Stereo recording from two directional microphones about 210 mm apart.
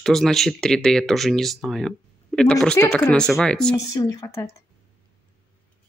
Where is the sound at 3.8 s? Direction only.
15° left (ahead or behind).